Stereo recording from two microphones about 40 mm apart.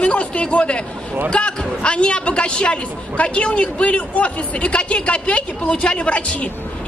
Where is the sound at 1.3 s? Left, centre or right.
Left.